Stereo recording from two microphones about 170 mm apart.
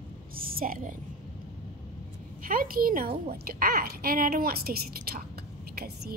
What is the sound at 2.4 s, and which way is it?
A woman's voice, 55° right (ahead or behind).